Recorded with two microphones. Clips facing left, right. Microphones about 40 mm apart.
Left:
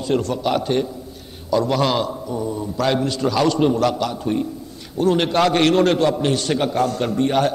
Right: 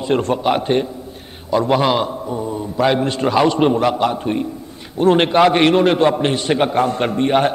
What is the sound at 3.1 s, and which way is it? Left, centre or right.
A man's voice, right.